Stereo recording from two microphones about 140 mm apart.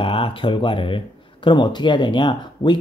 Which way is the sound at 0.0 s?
40° left (ahead or behind).